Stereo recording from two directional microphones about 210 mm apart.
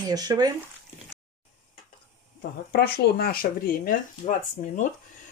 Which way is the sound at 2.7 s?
50° left (ahead or behind).